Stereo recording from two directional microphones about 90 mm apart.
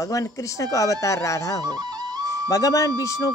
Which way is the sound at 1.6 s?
45° right (ahead or behind).